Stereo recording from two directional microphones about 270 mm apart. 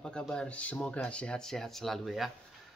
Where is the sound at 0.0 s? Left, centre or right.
Centre.